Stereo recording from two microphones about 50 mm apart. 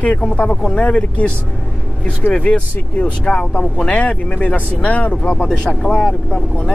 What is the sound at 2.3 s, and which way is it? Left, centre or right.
Speech, left.